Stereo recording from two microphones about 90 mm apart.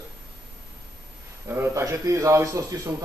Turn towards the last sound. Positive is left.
turn(degrees=-40)  # may be behind; listen again after turning